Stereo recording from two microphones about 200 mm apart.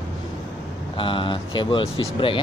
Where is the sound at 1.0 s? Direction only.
25° left (ahead or behind).